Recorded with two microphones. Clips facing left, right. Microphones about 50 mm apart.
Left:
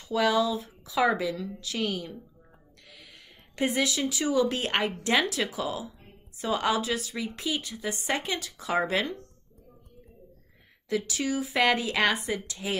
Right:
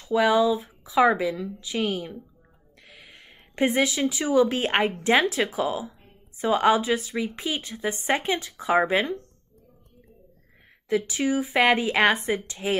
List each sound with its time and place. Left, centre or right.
0.1 s a woman's voice: right
10.9 s a woman's voice: right